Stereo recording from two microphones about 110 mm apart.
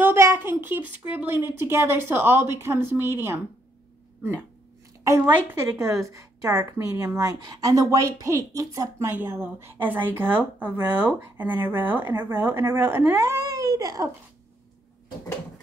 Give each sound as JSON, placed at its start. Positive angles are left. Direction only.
{"t": 0.0, "sound": "speech", "side_deg": -25}
{"t": 5.2, "sound": "speech", "side_deg": -25}
{"t": 9.1, "sound": "speech", "side_deg": -20}